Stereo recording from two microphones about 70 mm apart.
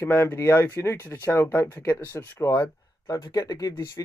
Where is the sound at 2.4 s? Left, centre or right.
Left.